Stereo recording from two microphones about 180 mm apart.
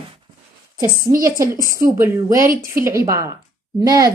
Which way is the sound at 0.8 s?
50° right (ahead or behind).